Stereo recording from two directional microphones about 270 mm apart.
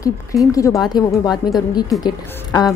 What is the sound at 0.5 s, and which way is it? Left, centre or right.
A woman's voice, centre.